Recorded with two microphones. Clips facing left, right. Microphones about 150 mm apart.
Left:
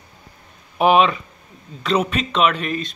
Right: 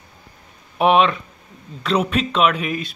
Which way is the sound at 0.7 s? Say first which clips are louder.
Even; centre (ahead or behind).